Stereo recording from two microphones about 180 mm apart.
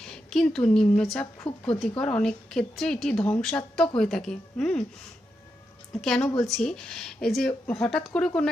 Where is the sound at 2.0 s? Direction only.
5° left (ahead or behind).